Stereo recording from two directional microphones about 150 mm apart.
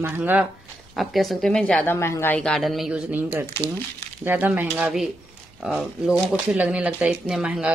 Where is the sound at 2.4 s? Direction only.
Centre (ahead or behind); by 3.5 s 15° right (ahead or behind).